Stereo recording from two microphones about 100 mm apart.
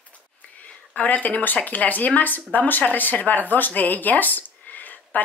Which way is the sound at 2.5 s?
15° left (ahead or behind).